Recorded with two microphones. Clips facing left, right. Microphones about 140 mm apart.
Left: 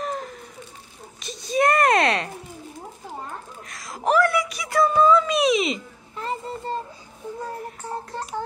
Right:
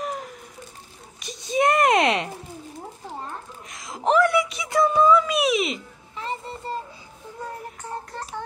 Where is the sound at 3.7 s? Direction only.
20° right (ahead or behind).